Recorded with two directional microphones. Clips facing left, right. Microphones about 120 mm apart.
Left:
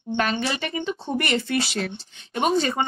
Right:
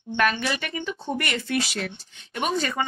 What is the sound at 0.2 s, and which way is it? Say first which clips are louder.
A woman's voice: right 1 dB; 30° left (ahead or behind).